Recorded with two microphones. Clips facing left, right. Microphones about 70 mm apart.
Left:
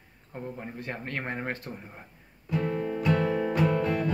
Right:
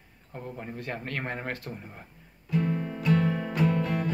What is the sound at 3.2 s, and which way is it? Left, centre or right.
Music, left.